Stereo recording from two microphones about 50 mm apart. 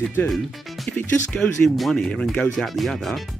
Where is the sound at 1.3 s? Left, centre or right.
Centre.